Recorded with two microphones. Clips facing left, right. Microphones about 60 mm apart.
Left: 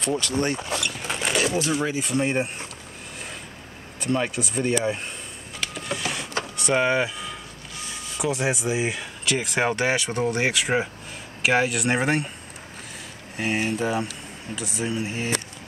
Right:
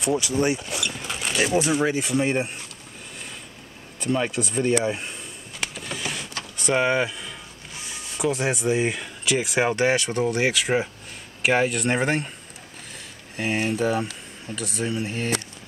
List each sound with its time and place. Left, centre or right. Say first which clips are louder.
0.0 s speech: right 2 dB; centre
0.6 s speech: left 2 dB; left
1.5 s speech: right 3 dB; centre
4.0 s speech: right 1 dB; centre
5.8 s printer: left 5 dB; centre
6.5 s speech: right 1 dB; centre
13.4 s speech: right 1 dB; centre